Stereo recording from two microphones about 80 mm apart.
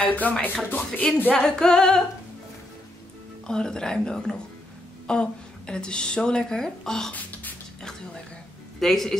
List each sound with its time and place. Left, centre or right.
0.0 s music: left
1.3 s a woman's voice: centre
3.4 s a woman's voice: centre
7.1 s a sound: centre
8.7 s a man's voice: centre